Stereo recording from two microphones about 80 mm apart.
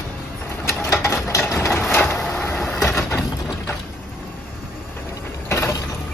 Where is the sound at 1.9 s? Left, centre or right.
Centre.